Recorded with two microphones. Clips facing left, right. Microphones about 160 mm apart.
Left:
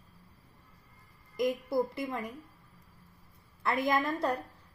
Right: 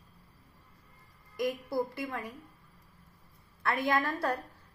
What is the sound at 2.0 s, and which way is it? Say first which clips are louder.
Speech: left 2 dB; 20° left (ahead or behind).